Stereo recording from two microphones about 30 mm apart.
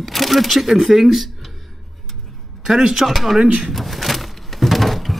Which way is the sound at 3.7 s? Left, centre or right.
Centre.